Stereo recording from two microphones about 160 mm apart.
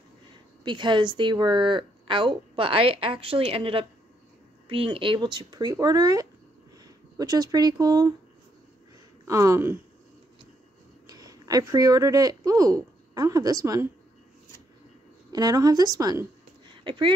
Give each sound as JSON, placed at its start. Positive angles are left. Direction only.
{"t": 0.7, "sound": "a woman's voice", "side_deg": -30}
{"t": 9.2, "sound": "speech", "side_deg": -20}
{"t": 11.1, "sound": "speech", "side_deg": -25}
{"t": 15.3, "sound": "speech", "side_deg": -25}